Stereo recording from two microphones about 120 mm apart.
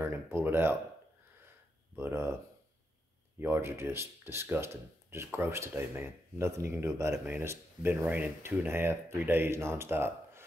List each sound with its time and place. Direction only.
0.0 s speech: 20° right (ahead or behind)
2.0 s speech: 20° right (ahead or behind)
3.3 s speech: 20° right (ahead or behind)